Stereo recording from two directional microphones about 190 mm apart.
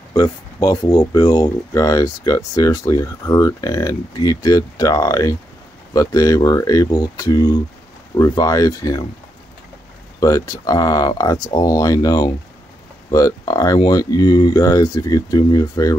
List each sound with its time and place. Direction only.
0.1 s speech: 20° left (ahead or behind)
10.2 s speech: 20° left (ahead or behind)